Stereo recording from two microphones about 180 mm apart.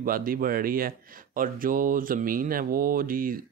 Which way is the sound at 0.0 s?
50° right (ahead or behind).